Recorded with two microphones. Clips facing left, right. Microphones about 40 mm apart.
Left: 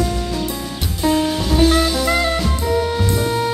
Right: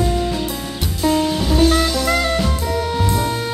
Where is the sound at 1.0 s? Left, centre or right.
Centre.